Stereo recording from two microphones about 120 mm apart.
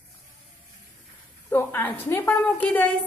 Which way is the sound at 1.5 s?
20° left (ahead or behind).